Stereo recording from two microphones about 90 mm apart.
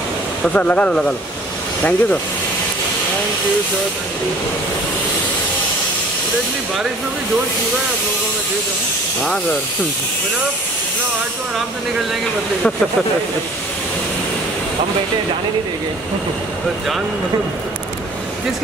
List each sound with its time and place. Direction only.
0.4 s speech: 15° left (ahead or behind)